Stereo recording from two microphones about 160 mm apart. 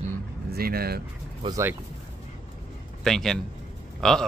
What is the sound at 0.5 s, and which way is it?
Speech, 70° right (ahead or behind).